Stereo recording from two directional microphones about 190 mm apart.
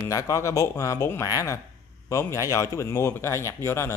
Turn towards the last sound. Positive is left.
turn(degrees=15)  # may be behind; listen again after turning